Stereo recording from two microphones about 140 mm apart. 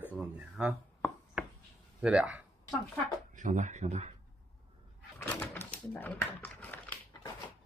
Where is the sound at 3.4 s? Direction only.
60° right (ahead or behind).